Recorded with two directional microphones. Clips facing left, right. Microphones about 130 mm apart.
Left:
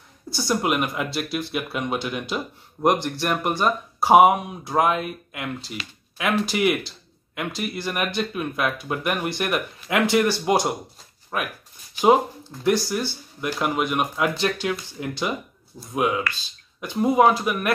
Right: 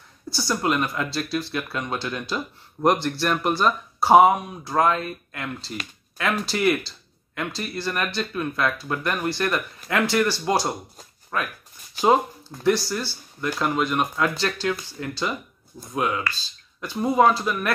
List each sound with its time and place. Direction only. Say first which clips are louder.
0.3 s speech: left 1 dB; 20° left (ahead or behind)
12.6 s speech: even; 15° left (ahead or behind)